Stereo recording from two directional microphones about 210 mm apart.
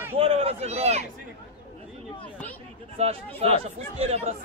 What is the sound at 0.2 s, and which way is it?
Speech, 30° right (ahead or behind).